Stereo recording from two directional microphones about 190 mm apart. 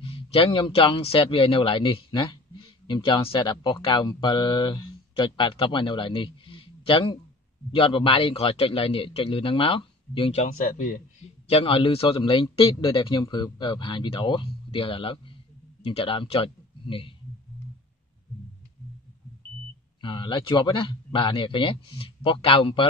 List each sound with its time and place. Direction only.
0.0 s a man's voice: 30° left (ahead or behind)
11.4 s a man's voice: 30° left (ahead or behind)
20.0 s a man's voice: 25° left (ahead or behind)